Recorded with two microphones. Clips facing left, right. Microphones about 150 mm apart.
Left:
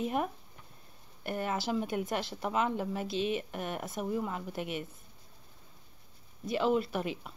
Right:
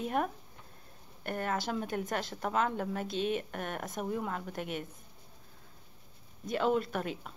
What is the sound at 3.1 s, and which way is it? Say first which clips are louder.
Speech: left 1 dB; 50° right (ahead or behind).